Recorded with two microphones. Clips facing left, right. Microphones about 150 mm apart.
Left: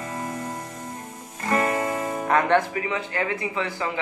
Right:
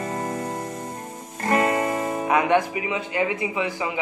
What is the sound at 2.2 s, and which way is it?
Speech, 10° right (ahead or behind).